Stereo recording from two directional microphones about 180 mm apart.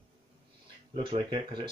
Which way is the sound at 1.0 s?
30° right (ahead or behind).